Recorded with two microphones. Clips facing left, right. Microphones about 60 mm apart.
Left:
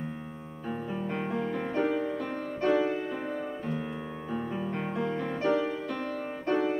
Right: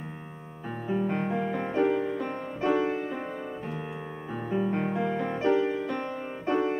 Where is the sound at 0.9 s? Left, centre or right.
Centre.